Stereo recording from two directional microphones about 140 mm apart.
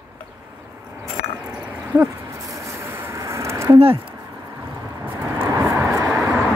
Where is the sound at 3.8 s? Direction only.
45° right (ahead or behind).